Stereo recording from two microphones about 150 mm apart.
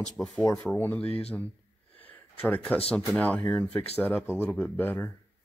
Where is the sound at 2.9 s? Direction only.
10° left (ahead or behind).